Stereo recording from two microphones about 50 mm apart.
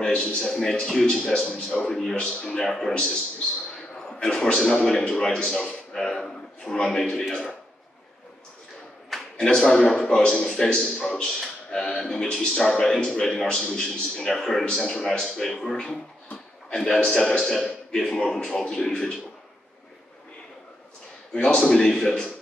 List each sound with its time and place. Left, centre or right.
0.0 s a man's voice: left
0.4 s a man's voice: centre
3.9 s a sound: centre
4.8 s a man's voice: centre
9.4 s a man's voice: centre
11.4 s a sound: centre
12.0 s a man's voice: centre
14.2 s a man's voice: centre
21.3 s a man's voice: centre